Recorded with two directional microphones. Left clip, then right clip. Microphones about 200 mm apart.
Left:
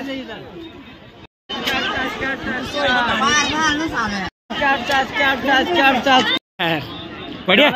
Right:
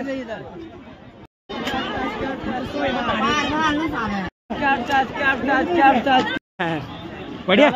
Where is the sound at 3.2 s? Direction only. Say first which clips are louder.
Left 3 dB; 35° right (ahead or behind).